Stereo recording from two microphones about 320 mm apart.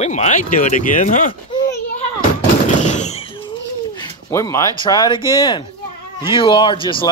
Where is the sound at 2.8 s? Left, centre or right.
Left.